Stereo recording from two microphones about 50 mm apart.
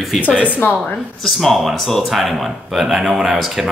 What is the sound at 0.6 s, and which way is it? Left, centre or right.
Speech, left.